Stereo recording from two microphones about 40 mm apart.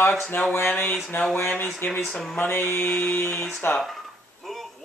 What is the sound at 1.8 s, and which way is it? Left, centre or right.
Mantra, left.